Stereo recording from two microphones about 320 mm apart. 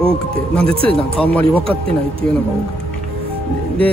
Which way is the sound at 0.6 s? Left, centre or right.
Centre.